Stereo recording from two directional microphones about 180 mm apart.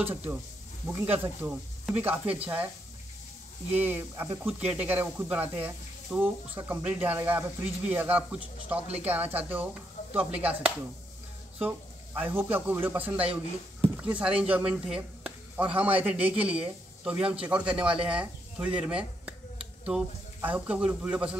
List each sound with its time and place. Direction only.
0.0 s speech: 10° right (ahead or behind)
3.7 s speech: 10° right (ahead or behind)